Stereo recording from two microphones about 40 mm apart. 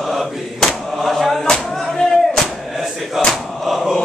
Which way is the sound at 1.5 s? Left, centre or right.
Centre.